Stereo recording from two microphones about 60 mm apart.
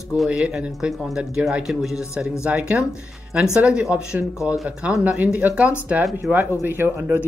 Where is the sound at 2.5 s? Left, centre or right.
Right.